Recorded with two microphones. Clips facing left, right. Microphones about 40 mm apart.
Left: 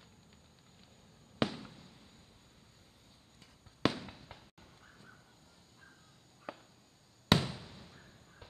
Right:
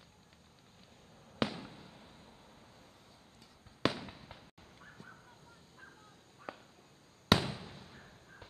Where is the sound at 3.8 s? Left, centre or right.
Centre.